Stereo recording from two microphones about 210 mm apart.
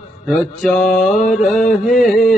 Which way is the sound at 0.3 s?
Centre (ahead or behind).